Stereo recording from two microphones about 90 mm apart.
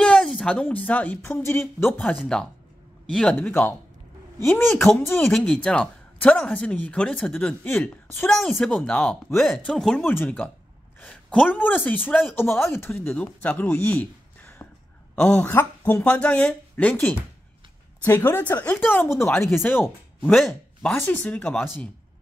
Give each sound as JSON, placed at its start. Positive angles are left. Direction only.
{"t": 0.0, "sound": "speech", "side_deg": 10}
{"t": 3.1, "sound": "speech", "side_deg": 10}
{"t": 3.3, "sound": "speech", "side_deg": 25}
{"t": 5.4, "sound": "speech", "side_deg": 10}
{"t": 8.4, "sound": "speech", "side_deg": 5}
{"t": 10.0, "sound": "speech", "side_deg": 20}
{"t": 11.0, "sound": "a sound", "side_deg": 10}
{"t": 11.5, "sound": "speech", "side_deg": 20}
{"t": 20.3, "sound": "speech", "side_deg": 0}
{"t": 20.9, "sound": "speech", "side_deg": 20}